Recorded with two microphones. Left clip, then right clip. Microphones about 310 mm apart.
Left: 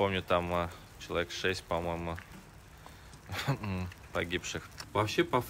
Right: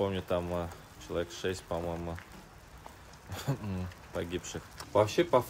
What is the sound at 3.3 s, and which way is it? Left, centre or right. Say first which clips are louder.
Speech: left 3 dB; centre.